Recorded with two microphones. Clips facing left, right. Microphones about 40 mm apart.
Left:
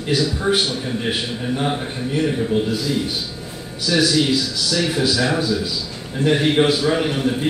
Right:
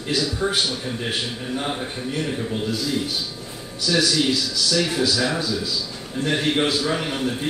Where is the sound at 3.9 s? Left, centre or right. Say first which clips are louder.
Left 3 dB; centre.